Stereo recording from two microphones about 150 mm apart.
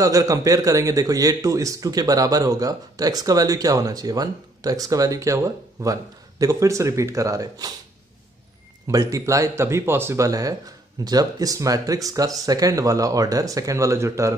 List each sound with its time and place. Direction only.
0.0 s a man's voice: 25° right (ahead or behind)
8.8 s a man's voice: 20° right (ahead or behind)